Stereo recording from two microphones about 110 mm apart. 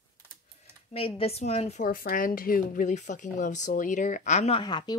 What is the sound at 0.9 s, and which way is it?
Speech, 60° left (ahead or behind).